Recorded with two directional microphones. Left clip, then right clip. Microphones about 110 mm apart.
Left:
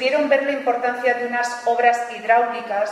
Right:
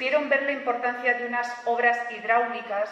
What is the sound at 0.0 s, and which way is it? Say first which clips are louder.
A woman's voice: left 5 dB; 20° right (ahead or behind).